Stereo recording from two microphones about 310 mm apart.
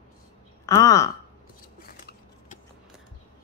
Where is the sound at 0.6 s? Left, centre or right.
Centre.